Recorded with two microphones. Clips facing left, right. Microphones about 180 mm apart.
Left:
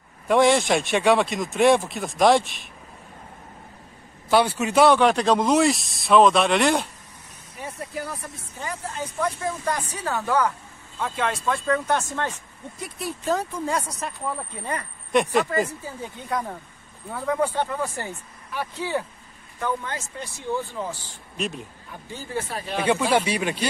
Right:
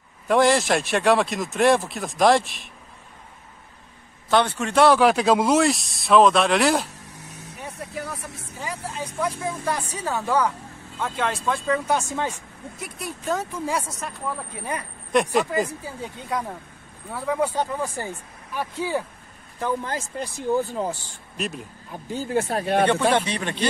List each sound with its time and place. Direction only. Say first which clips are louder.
0.3 s speech: even; centre (ahead or behind)
4.3 s speech: left 1 dB; 10° left (ahead or behind)
8.6 s speech: even; 10° right (ahead or behind)
11.0 s speech: even; centre (ahead or behind)
14.6 s speech: even; 10° right (ahead or behind)
15.1 s speech: even; centre (ahead or behind)
15.8 s speech: right 1 dB; 15° right (ahead or behind)
19.6 s speech: right 2 dB; 35° right (ahead or behind)
21.4 s speech: left 1 dB; centre (ahead or behind)
22.1 s speech: right 7 dB; 45° right (ahead or behind)
22.8 s a man's voice: even; 10° left (ahead or behind)